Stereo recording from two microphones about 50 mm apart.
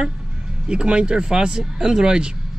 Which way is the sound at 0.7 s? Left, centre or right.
Right.